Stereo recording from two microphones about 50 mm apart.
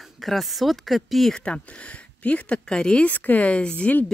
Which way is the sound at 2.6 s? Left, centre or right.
Centre.